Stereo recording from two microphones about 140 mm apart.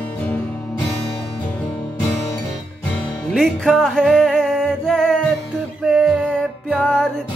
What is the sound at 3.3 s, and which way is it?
Music, centre (ahead or behind).